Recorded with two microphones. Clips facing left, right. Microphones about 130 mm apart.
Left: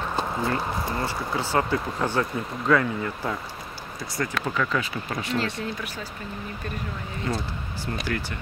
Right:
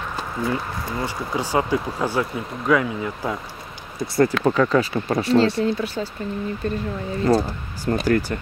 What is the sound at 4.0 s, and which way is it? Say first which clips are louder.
Speech: right 11 dB; 30° right (ahead or behind).